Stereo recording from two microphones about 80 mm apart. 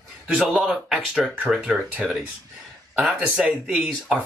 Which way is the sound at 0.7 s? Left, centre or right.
Centre.